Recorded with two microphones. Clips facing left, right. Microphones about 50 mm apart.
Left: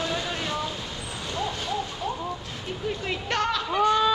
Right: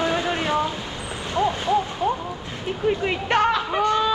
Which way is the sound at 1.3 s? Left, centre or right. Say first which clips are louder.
Right 9 dB; right.